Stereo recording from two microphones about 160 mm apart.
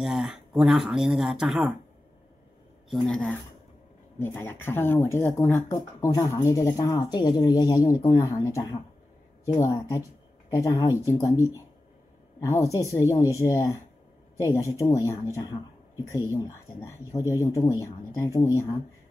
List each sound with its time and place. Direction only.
0.0 s speech: 5° right (ahead or behind)
2.9 s speech: 5° left (ahead or behind)
12.6 s speech: 20° left (ahead or behind)
16.3 s speech: 20° left (ahead or behind)